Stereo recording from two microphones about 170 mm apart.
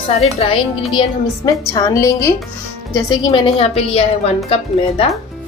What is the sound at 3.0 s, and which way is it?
A woman's voice, 25° left (ahead or behind).